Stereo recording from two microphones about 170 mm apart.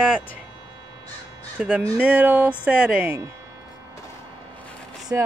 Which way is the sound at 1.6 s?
5° right (ahead or behind).